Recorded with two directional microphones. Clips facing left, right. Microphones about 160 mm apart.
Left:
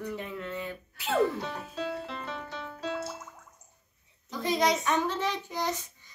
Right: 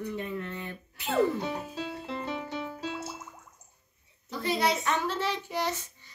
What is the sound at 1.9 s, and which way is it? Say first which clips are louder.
Music: even; 25° right (ahead or behind).